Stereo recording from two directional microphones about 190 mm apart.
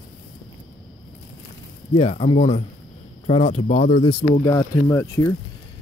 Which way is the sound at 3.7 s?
35° left (ahead or behind).